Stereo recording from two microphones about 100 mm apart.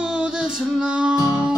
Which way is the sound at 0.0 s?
10° right (ahead or behind).